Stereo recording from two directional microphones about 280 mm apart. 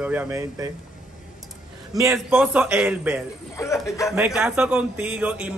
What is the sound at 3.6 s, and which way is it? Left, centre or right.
Speech, centre.